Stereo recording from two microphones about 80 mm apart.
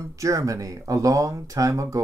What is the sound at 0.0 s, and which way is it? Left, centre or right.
Speech, right.